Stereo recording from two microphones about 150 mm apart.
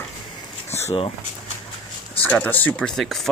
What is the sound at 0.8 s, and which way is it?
Speech, 40° left (ahead or behind).